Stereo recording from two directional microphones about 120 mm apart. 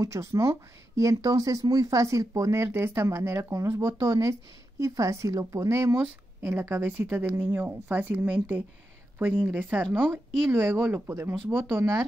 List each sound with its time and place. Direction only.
0.0 s a woman's voice: 25° right (ahead or behind)